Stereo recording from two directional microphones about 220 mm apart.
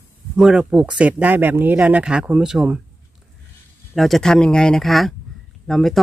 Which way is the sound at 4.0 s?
Centre (ahead or behind).